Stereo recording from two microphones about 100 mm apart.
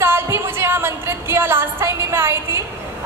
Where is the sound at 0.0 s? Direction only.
25° right (ahead or behind).